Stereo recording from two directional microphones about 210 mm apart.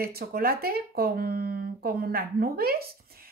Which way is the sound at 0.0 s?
45° right (ahead or behind).